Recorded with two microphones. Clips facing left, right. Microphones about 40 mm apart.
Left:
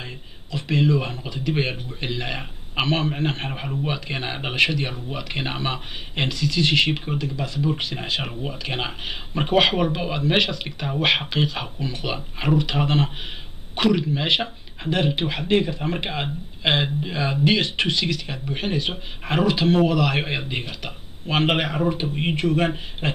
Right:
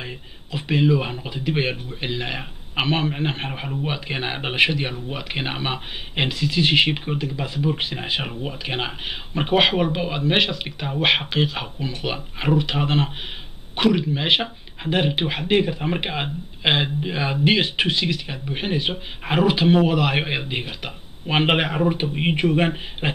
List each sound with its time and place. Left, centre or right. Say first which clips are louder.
0.0 s speech: right 2 dB; centre